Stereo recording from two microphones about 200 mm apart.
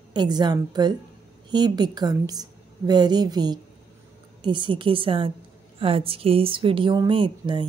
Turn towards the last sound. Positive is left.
turn(degrees=-25)  # may be behind; listen again after turning